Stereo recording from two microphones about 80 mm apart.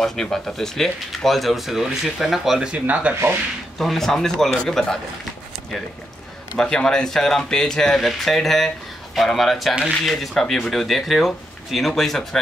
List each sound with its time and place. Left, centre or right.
0.0 s speech: centre
2.7 s speech: centre
3.7 s speech: centre
6.6 s speech: centre